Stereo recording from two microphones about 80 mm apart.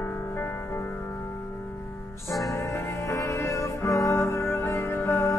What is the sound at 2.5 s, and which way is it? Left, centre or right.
Music, left.